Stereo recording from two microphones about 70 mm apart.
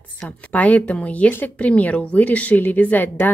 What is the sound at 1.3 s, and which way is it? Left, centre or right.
Speech, left.